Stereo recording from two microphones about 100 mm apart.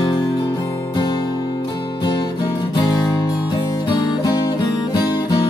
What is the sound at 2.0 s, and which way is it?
Music, 50° left (ahead or behind).